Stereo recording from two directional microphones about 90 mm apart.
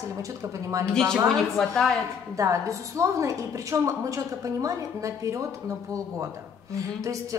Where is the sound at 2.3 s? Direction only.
35° right (ahead or behind).